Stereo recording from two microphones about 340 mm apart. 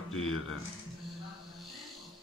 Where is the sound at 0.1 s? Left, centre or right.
Left.